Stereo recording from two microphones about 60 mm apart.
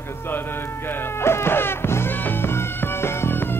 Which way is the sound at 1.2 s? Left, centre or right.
Left.